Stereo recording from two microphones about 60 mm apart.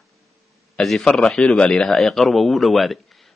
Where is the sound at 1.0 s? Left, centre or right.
Centre.